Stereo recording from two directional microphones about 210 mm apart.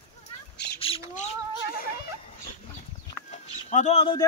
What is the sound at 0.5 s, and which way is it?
Squawk, 50° left (ahead or behind).